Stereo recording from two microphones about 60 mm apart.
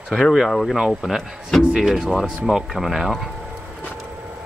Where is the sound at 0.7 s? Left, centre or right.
Centre.